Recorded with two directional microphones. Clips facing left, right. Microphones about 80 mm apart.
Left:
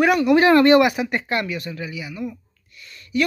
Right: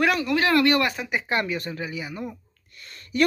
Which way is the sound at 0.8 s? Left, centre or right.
Centre.